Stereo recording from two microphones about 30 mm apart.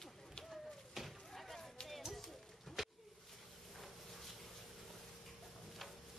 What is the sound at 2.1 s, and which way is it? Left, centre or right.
Music, centre.